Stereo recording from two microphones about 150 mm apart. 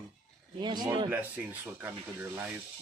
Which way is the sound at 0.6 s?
30° right (ahead or behind).